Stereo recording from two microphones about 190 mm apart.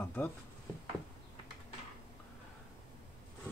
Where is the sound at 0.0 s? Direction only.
5° left (ahead or behind).